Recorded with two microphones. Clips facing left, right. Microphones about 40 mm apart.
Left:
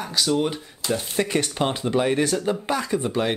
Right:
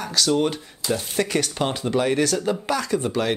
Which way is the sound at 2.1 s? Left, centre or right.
Left.